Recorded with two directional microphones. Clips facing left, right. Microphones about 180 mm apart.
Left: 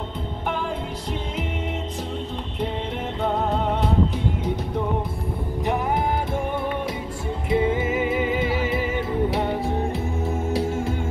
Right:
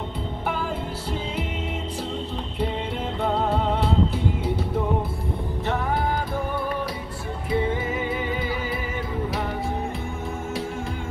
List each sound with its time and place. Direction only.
3.2 s music: 10° right (ahead or behind)
7.4 s music: 25° left (ahead or behind)